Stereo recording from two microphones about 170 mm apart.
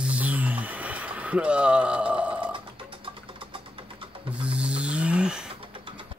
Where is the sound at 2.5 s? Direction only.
30° right (ahead or behind).